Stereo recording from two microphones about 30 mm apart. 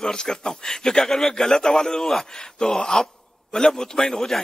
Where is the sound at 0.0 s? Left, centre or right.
Left.